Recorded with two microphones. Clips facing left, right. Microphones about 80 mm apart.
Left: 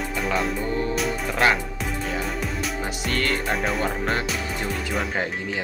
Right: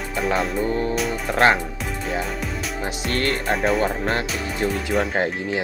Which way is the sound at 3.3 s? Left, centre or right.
Centre.